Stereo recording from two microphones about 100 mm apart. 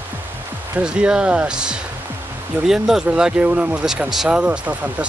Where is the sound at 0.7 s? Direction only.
10° right (ahead or behind).